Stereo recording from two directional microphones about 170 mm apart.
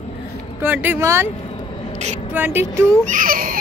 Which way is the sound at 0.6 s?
10° right (ahead or behind).